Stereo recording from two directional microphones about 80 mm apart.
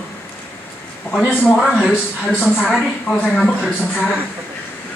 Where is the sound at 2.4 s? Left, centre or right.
Centre.